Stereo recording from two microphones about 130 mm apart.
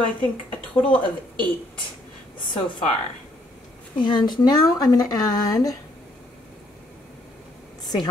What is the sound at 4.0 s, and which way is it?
A woman's voice, 35° left (ahead or behind).